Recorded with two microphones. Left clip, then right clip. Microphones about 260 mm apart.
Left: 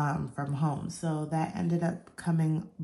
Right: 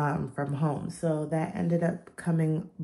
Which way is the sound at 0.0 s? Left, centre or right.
Centre.